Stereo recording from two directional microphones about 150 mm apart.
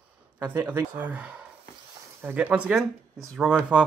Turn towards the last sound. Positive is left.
turn(degrees=-5)  # may be behind; listen again after turning